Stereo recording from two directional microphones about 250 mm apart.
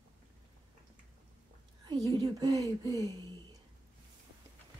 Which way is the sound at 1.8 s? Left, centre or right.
Centre.